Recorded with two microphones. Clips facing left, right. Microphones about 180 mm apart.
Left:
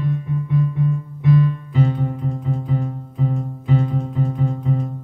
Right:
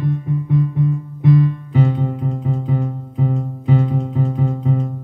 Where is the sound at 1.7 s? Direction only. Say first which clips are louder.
Right 4 dB; 60° right (ahead or behind).